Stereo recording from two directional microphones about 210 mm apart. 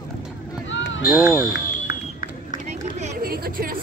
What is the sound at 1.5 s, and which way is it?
Run, 45° left (ahead or behind).